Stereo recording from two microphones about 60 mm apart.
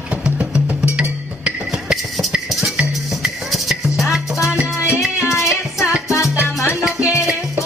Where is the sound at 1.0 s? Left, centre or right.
Centre.